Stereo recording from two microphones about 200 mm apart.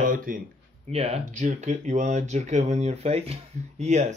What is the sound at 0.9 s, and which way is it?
Speech, 30° right (ahead or behind).